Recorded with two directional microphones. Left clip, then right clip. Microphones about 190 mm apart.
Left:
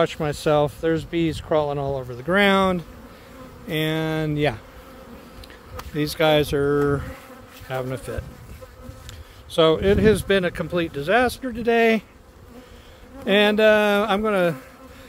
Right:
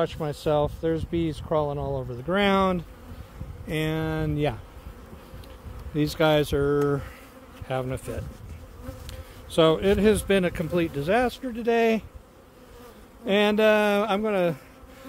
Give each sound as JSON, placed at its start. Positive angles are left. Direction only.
{"t": 0.0, "sound": "speech", "side_deg": 30}
{"t": 2.3, "sound": "speech", "side_deg": 10}
{"t": 5.9, "sound": "speech", "side_deg": 10}
{"t": 7.6, "sound": "bee", "side_deg": 5}
{"t": 9.5, "sound": "speech", "side_deg": 5}
{"t": 13.2, "sound": "speech", "side_deg": 10}